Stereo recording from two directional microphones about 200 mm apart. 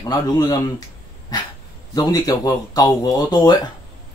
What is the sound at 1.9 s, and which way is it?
Speech, 20° left (ahead or behind).